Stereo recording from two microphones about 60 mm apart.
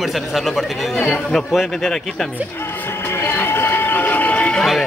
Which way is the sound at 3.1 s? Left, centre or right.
Left.